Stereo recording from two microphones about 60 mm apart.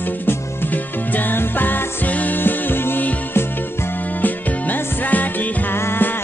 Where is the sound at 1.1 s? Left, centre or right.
Left.